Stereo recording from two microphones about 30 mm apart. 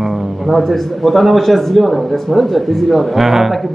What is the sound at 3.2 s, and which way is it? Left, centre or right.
Speech, centre.